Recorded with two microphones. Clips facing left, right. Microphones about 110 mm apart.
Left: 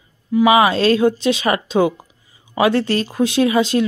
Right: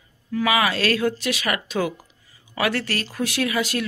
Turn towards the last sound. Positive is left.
turn(degrees=25)  # may be behind; listen again after turning